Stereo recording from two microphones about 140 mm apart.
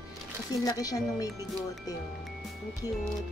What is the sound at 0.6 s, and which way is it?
Speech, 25° left (ahead or behind).